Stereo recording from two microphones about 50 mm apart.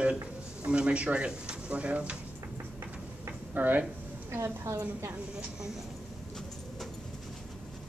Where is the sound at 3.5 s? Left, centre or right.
Right.